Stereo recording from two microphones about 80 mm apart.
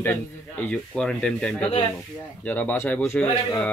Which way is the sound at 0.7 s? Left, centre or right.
Centre.